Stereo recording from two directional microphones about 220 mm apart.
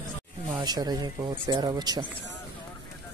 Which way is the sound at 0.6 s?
20° right (ahead or behind).